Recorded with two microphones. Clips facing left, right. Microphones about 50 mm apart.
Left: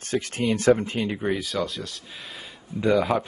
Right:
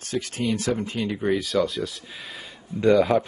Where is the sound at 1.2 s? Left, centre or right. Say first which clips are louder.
Right 4 dB; centre.